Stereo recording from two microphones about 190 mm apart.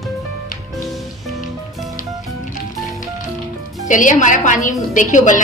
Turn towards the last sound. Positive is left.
turn(degrees=40)  # may be behind; listen again after turning